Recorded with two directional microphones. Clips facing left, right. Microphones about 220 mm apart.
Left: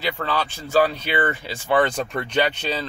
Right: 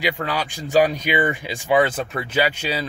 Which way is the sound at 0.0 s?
15° right (ahead or behind).